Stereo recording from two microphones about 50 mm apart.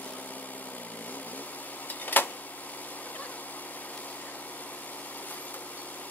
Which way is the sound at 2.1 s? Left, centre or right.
Left.